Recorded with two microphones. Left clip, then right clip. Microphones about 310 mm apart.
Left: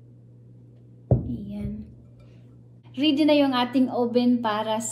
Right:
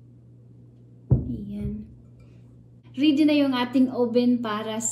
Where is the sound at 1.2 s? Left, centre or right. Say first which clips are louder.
Even; centre.